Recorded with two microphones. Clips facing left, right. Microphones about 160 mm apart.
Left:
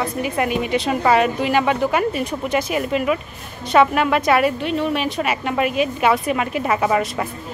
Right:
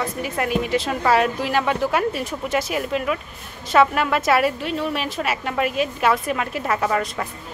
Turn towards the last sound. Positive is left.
turn(degrees=5)  # may be behind; listen again after turning